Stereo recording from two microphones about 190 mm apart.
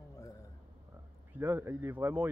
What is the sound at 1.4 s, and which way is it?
Speech, 15° right (ahead or behind).